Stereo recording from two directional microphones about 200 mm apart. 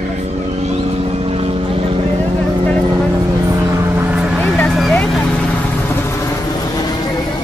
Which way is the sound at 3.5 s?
15° right (ahead or behind).